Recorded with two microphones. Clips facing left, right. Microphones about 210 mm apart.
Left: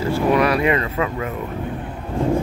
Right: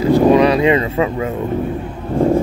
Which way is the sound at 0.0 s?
20° right (ahead or behind).